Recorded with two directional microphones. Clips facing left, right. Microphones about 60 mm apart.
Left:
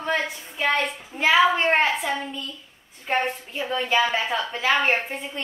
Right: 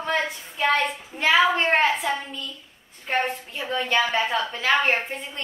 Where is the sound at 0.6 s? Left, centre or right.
Centre.